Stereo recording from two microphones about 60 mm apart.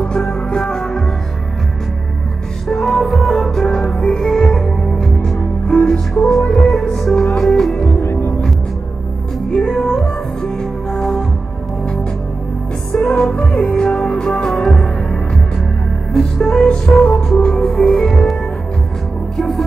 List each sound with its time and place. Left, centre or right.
0.0 s music: centre
2.7 s music: centre
5.8 s music: left
6.7 s music: centre
8.0 s music: left
9.5 s music: centre
12.9 s music: centre
13.5 s music: left
13.7 s music: centre